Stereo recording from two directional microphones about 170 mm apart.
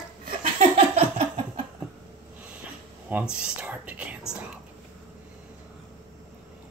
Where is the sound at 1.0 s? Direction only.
40° right (ahead or behind).